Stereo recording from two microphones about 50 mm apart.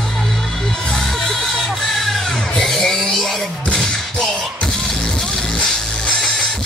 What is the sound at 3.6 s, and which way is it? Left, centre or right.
Music, centre.